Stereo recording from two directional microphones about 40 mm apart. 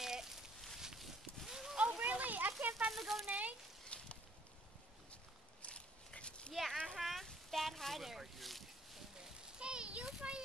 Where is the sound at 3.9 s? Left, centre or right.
Left.